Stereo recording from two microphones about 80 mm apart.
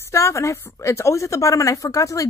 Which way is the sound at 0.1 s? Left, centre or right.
Left.